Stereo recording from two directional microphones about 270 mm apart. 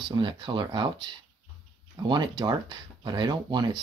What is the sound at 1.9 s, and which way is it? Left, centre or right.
Speech, centre.